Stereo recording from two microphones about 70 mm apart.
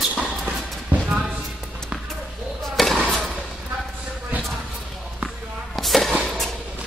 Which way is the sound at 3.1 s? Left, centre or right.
Centre.